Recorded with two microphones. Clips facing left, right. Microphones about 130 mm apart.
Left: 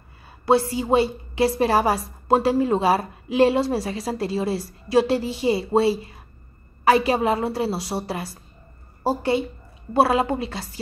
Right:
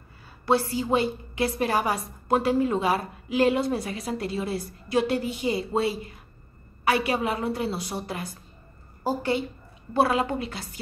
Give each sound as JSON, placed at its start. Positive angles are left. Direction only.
{"t": 0.5, "sound": "a woman's voice", "side_deg": 25}